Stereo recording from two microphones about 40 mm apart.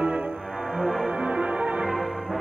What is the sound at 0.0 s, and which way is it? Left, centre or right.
Music, right.